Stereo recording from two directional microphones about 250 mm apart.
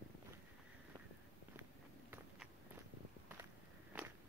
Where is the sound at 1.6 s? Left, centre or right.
Centre.